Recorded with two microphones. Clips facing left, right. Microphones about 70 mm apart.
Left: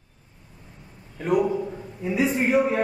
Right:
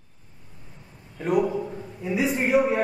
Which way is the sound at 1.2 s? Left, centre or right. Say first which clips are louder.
Left 1 dB; centre.